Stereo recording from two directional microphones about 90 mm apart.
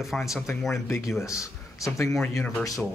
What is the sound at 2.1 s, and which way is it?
Speech, 5° left (ahead or behind).